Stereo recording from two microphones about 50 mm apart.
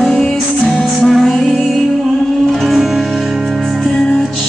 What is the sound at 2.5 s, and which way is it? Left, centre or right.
Music, centre.